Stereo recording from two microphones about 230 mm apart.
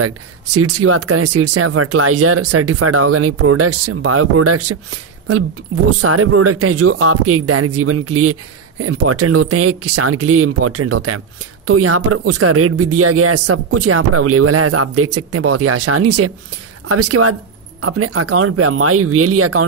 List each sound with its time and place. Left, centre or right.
0.0 s speech: right